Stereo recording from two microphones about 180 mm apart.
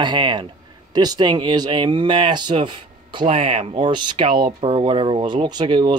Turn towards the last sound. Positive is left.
turn(degrees=-25)  # may be behind; listen again after turning